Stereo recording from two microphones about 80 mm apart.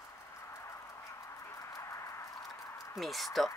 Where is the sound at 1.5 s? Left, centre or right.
Left.